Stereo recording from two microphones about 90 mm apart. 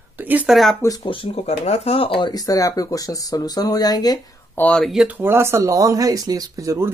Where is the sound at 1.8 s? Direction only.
90° left.